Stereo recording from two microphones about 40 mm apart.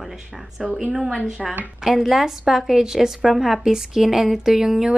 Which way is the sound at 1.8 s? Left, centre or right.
Centre.